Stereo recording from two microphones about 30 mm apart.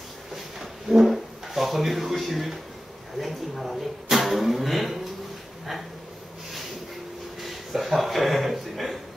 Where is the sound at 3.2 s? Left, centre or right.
Centre.